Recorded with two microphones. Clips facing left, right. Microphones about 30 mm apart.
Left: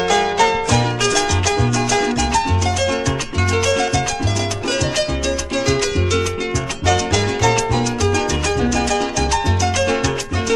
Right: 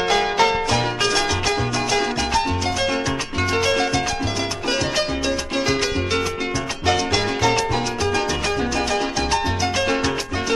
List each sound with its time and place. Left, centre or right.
0.4 s music: right
8.7 s music: right